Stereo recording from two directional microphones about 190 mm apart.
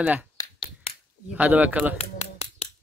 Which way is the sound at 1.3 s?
10° right (ahead or behind).